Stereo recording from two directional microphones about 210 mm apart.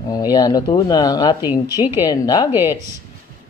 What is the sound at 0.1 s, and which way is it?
Speech, 20° left (ahead or behind).